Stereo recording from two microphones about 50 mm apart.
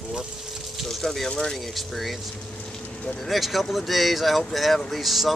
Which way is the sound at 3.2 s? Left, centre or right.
Centre.